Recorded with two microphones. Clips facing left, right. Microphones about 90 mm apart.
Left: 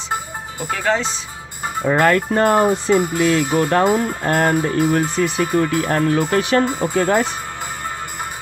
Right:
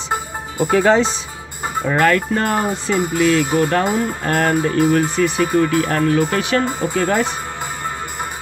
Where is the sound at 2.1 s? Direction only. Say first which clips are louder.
Left 3 dB; 30° left (ahead or behind).